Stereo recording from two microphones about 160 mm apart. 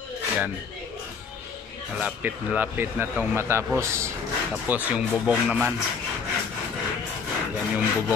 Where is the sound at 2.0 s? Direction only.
10° right (ahead or behind).